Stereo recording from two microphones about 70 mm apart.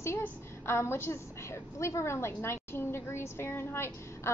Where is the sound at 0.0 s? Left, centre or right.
Left.